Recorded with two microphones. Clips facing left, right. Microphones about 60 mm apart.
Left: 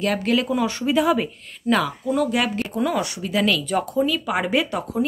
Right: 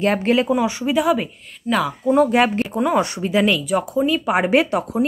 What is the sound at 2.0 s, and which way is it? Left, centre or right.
Speech, right.